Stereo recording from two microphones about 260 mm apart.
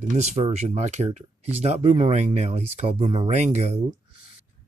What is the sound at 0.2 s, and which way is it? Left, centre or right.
Speech, right.